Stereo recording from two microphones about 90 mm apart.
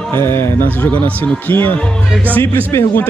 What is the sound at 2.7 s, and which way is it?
Speech, 35° left (ahead or behind).